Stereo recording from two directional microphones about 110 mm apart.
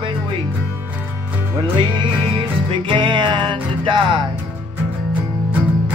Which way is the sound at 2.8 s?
45° right (ahead or behind).